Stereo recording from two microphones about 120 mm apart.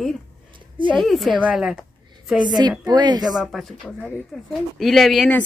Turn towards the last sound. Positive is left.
turn(degrees=0)  # may be behind; listen again after turning